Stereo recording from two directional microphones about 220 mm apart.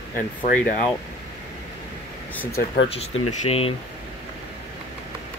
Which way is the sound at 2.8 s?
25° left (ahead or behind).